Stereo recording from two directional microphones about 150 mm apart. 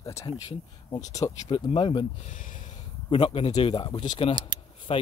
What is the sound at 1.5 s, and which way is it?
Speech, 35° left (ahead or behind).